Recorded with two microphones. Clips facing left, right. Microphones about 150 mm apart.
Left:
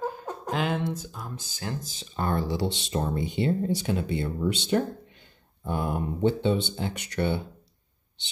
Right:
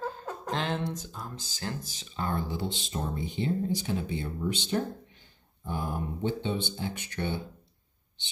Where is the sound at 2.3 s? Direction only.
85° left.